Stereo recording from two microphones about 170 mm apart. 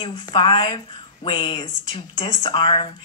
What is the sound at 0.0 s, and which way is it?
A woman's voice, 30° left (ahead or behind).